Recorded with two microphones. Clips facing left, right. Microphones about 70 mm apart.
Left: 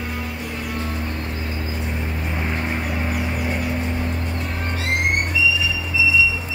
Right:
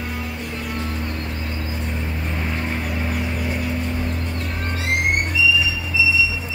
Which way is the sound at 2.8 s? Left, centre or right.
Centre.